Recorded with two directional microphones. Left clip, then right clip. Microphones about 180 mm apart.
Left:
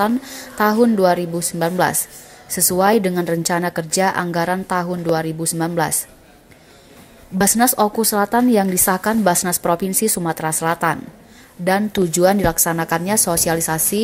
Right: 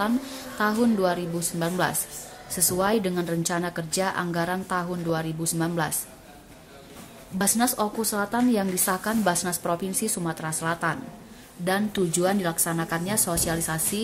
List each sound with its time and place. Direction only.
0.0 s a woman's voice: 35° left (ahead or behind)
7.3 s a woman's voice: 40° left (ahead or behind)